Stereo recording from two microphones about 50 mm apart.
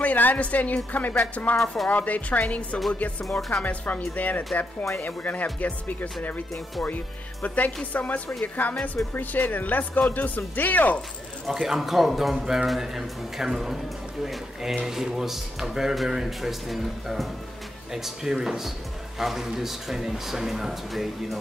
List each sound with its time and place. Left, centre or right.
0.0 s a woman's voice: left
3.3 s speech: centre
3.6 s speech: left
7.4 s speech: left
11.4 s speech: centre